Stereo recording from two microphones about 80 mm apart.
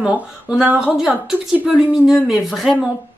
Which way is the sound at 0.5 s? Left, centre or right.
Centre.